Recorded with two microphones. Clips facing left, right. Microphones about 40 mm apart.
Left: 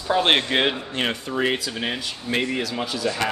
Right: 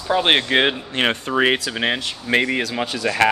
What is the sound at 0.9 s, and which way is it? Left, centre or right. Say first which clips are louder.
Speech: right 5 dB; right.